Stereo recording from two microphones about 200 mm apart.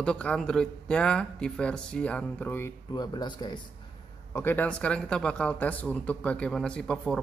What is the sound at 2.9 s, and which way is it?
Speech, 20° left (ahead or behind).